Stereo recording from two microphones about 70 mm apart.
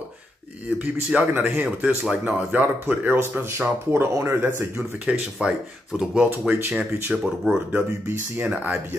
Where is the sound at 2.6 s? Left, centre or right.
Right.